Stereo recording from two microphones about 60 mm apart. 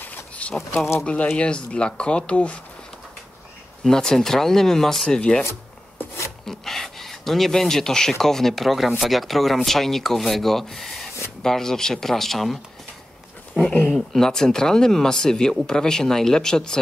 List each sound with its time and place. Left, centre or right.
0.0 s insect: left
1.0 s speech: left
3.8 s speech: centre
6.4 s speech: centre
13.9 s speech: centre